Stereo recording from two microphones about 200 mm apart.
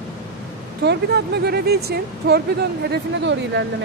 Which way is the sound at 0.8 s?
55° right (ahead or behind).